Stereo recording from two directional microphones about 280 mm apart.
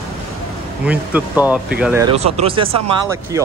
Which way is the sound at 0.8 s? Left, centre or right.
Centre.